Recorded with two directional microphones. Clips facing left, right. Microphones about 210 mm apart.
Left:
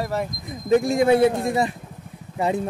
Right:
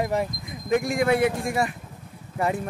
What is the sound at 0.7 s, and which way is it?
Speech, 25° left (ahead or behind).